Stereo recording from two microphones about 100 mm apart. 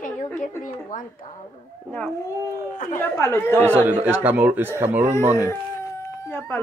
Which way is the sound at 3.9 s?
20° right (ahead or behind).